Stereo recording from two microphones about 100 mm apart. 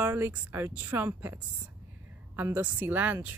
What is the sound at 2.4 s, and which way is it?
Speech, 20° right (ahead or behind).